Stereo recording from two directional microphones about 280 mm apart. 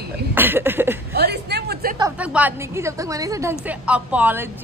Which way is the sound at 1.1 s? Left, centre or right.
Right.